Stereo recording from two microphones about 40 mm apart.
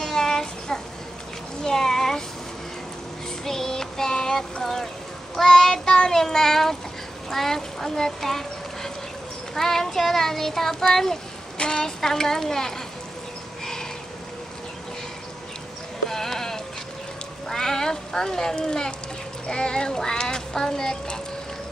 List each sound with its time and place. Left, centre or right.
0.0 s child singing: centre
1.6 s a sound: centre
3.4 s child singing: centre
6.0 s a child's voice: centre
11.5 s speech: centre
16.1 s sheep: centre
17.5 s speech: centre